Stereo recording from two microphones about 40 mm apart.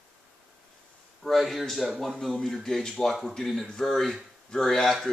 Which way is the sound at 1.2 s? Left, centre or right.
Centre.